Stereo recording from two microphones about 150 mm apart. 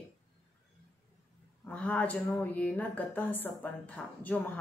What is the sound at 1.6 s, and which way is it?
Speech, 10° left (ahead or behind).